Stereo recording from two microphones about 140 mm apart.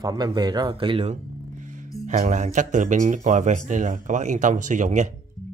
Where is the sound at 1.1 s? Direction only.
65° right (ahead or behind).